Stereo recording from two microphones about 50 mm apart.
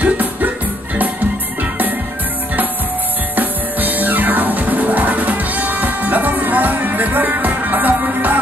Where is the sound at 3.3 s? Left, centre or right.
Right.